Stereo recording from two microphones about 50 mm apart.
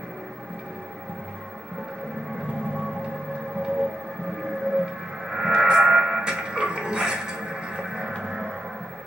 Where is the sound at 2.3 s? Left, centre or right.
Centre.